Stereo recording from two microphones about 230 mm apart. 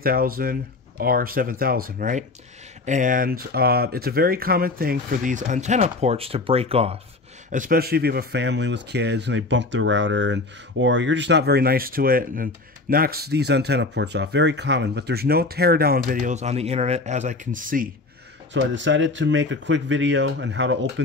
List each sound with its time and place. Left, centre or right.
0.0 s speech: right
7.5 s speech: right
18.5 s speech: right